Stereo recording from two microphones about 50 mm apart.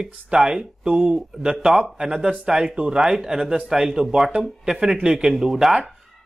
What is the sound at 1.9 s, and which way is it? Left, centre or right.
Speech, centre.